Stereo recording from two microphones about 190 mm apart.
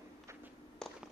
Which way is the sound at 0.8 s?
5° left (ahead or behind).